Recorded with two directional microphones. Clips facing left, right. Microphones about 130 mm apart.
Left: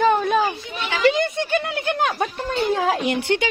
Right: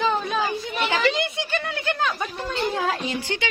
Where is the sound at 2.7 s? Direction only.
65° left (ahead or behind).